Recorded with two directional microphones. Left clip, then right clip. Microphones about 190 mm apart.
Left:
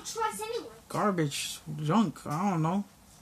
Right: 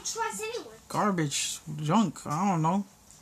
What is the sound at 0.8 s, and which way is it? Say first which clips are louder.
Speech: right 1 dB; 20° right (ahead or behind).